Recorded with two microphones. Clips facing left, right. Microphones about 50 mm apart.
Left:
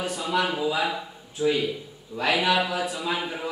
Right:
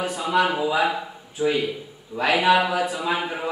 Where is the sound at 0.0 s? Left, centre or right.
Centre.